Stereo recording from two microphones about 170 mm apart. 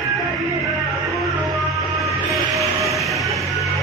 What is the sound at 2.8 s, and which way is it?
Train, centre (ahead or behind).